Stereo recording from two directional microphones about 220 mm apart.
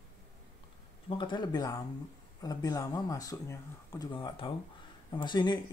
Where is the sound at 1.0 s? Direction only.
20° left (ahead or behind).